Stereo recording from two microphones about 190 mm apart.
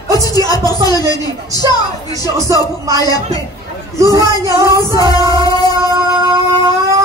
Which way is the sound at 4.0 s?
15° right (ahead or behind).